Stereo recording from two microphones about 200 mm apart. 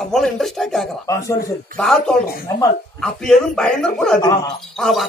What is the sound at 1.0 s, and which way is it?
Speech, 15° left (ahead or behind).